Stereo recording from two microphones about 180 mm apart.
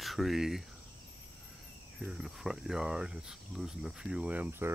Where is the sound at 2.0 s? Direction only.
Centre (ahead or behind).